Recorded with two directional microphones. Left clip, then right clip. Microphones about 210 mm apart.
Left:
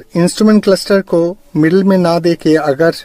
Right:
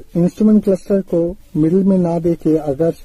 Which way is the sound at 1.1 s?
40° left (ahead or behind).